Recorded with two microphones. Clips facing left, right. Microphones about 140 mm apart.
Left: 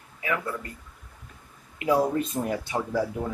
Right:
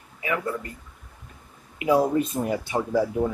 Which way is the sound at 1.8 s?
10° right (ahead or behind).